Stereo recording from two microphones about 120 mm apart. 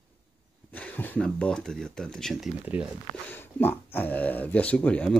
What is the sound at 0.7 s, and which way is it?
Speech, 15° left (ahead or behind).